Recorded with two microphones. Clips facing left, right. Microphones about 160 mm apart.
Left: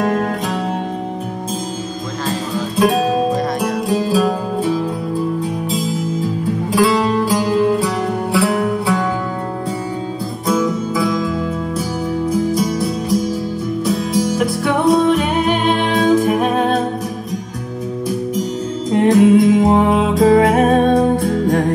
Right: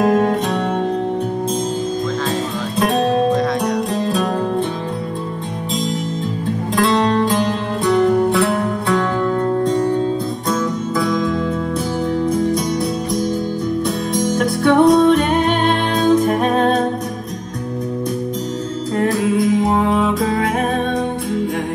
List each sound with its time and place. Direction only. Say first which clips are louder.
0.0 s music: right 3 dB; centre (ahead or behind)
2.8 s music: left 1 dB; 5° left (ahead or behind)
6.7 s music: left 1 dB; 5° left (ahead or behind)
10.5 s music: left 4 dB; 5° left (ahead or behind)
12.3 s music: left 3 dB; 5° left (ahead or behind)
13.8 s music: left 2 dB; 5° left (ahead or behind)
18.9 s music: left 7 dB; 20° left (ahead or behind); by 21.6 s 40° left (ahead or behind)